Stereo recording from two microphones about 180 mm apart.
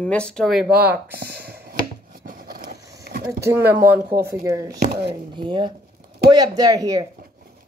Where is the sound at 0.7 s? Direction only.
10° right (ahead or behind).